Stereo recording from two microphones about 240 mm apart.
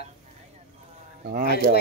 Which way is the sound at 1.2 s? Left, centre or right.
Right.